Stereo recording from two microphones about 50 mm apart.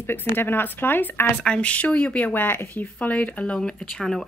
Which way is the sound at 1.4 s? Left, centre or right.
Left.